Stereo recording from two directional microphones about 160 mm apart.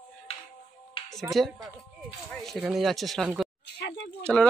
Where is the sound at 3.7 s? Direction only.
90° left.